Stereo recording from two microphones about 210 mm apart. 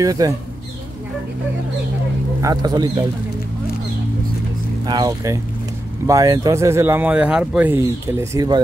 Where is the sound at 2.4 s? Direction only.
15° right (ahead or behind).